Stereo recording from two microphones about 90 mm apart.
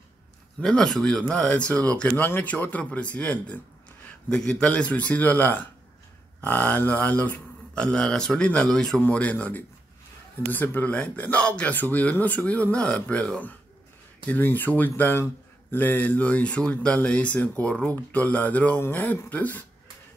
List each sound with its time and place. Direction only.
0.6 s speech: 5° left (ahead or behind)
9.0 s speech: 15° left (ahead or behind)